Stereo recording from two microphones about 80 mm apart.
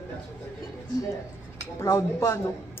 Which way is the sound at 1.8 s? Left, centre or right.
Left.